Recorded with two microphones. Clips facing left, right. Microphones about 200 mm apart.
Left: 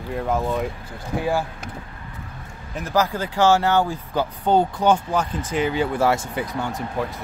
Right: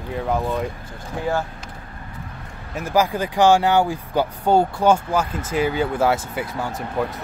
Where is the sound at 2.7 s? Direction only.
10° right (ahead or behind).